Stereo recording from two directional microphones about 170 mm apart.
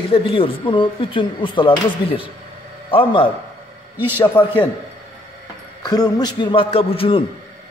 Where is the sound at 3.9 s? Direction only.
10° right (ahead or behind).